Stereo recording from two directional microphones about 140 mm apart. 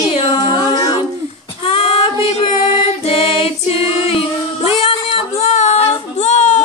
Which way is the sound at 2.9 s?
45° left (ahead or behind).